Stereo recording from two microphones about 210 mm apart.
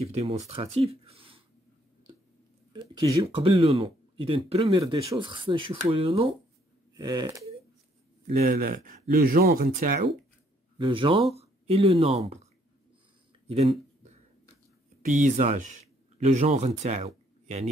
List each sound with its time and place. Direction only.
0.0 s speech: 30° right (ahead or behind)
2.7 s speech: 20° right (ahead or behind)
8.3 s speech: 40° right (ahead or behind)
10.8 s speech: 25° right (ahead or behind)
13.5 s a sound: 30° right (ahead or behind)
15.0 s speech: 35° right (ahead or behind)